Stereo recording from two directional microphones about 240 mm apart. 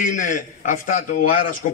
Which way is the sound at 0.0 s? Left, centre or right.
Left.